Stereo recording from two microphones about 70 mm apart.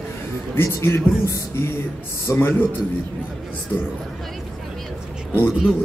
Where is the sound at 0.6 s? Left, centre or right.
Left.